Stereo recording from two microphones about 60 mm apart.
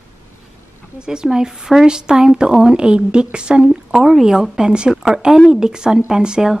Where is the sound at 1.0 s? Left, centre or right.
Centre.